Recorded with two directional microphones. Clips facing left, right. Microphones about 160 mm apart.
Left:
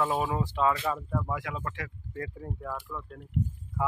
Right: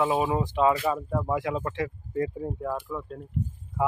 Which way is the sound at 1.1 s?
25° right (ahead or behind).